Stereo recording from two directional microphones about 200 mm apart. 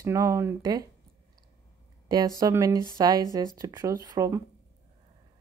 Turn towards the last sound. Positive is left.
turn(degrees=-15)  # may be behind; listen again after turning